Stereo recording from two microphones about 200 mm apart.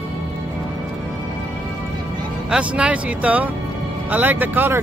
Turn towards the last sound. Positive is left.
turn(degrees=-10)  # may be behind; listen again after turning